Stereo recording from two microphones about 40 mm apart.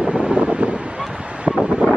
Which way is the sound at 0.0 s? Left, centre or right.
Right.